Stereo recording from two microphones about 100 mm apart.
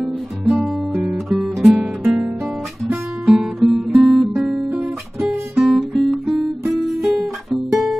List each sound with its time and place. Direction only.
0.0 s music: 5° right (ahead or behind)
1.0 s guitar: 5° right (ahead or behind)
6.7 s music: centre (ahead or behind)